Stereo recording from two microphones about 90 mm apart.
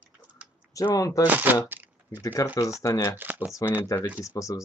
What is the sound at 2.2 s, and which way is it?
Speech, 35° left (ahead or behind).